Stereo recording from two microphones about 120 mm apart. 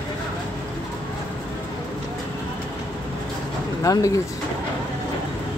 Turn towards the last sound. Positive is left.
turn(degrees=30)  # may be behind; listen again after turning